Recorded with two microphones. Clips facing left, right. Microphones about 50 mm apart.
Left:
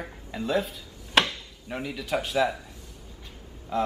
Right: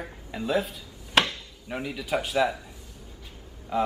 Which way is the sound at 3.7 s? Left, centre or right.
Centre.